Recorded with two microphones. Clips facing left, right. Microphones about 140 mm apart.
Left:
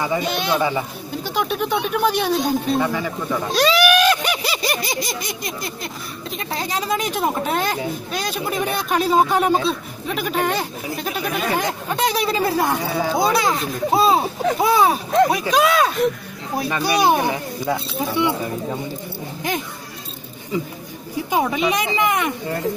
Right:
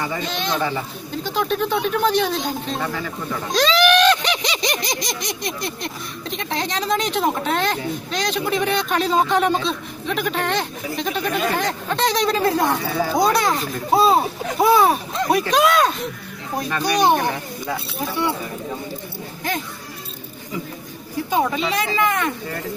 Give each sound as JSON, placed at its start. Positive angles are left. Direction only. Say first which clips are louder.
{"t": 0.0, "sound": "a woman's voice", "louder": "left 3 dB", "side_deg": 15}
{"t": 3.5, "sound": "a sound", "louder": "even", "side_deg": 10}
{"t": 6.3, "sound": "a woman's voice", "louder": "even", "side_deg": 5}
{"t": 21.3, "sound": "a woman's voice", "louder": "left 1 dB", "side_deg": 15}